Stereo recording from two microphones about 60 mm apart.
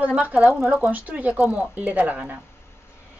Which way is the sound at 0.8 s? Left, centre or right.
Right.